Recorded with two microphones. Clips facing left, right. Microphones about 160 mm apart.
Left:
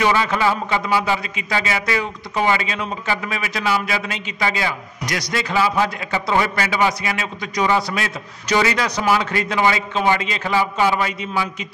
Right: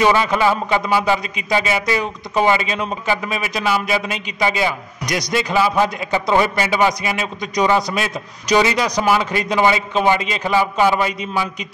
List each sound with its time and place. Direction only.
0.0 s a man's voice: 20° right (ahead or behind)